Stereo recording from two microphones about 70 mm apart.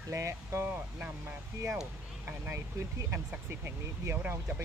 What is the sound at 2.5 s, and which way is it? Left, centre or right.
Speech, right.